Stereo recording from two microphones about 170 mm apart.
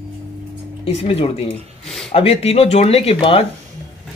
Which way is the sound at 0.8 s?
35° left (ahead or behind).